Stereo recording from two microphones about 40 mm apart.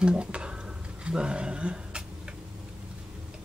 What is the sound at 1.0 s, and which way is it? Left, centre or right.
Speech, right.